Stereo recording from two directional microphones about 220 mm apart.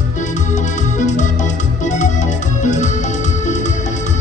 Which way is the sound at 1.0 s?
35° left (ahead or behind).